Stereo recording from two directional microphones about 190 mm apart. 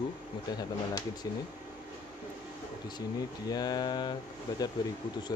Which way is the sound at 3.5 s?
20° left (ahead or behind).